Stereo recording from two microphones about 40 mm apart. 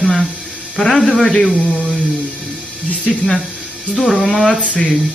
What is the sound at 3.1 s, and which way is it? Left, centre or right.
Speech, centre.